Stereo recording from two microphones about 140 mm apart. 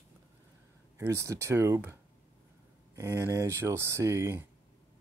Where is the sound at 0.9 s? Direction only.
20° right (ahead or behind).